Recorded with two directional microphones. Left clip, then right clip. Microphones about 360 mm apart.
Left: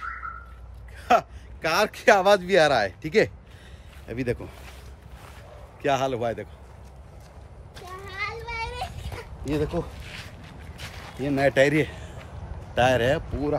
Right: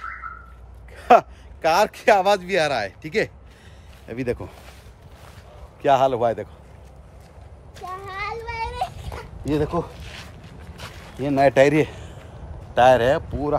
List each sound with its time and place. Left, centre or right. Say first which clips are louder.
0.9 s a sound: right 6 dB; centre
1.6 s speech: right 5 dB; centre
5.8 s speech: right 7 dB; centre
8.0 s a sound: right 1 dB; centre
9.7 s speech: right 4 dB; centre
11.2 s a man's voice: right 5 dB; centre